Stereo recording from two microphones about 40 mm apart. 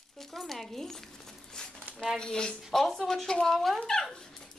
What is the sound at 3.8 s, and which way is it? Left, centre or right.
Dog, centre.